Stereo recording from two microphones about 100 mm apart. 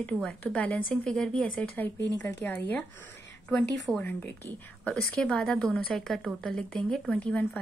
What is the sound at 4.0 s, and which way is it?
Speech, 20° left (ahead or behind).